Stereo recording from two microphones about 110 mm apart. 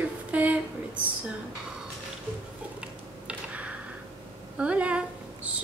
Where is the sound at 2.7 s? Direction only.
10° right (ahead or behind).